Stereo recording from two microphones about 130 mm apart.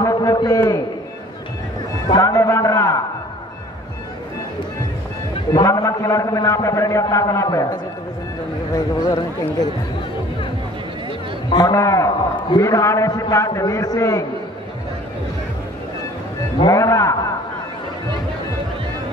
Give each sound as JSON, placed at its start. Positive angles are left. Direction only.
{"t": 0.0, "sound": "a sound", "side_deg": 25}
{"t": 2.0, "sound": "music", "side_deg": 25}
{"t": 5.5, "sound": "a man's voice", "side_deg": 30}
{"t": 11.5, "sound": "a man's voice", "side_deg": 30}
{"t": 16.6, "sound": "a man's voice", "side_deg": 25}